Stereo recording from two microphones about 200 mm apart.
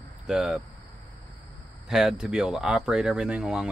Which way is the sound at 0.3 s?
Centre (ahead or behind).